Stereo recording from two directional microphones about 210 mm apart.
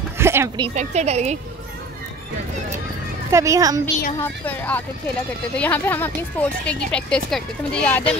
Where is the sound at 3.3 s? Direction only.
15° right (ahead or behind).